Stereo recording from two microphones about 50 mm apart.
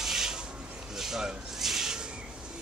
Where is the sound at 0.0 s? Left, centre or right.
Centre.